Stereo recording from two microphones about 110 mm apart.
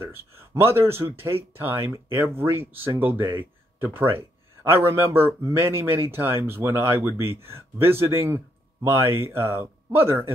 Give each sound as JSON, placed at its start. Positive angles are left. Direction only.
{"t": 0.0, "sound": "speech", "side_deg": -25}